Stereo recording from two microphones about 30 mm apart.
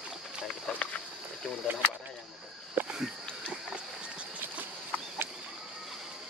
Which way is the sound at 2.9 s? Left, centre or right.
Right.